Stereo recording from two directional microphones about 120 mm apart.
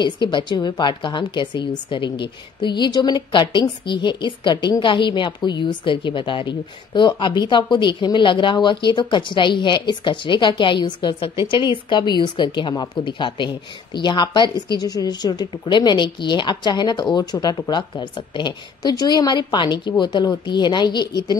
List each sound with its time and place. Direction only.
0.0 s a woman's voice: 40° left (ahead or behind)